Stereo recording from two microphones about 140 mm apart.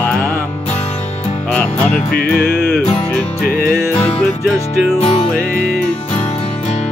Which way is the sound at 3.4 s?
90° left.